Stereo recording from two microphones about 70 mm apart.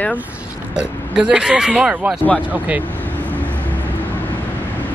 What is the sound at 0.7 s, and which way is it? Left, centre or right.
Speech, centre.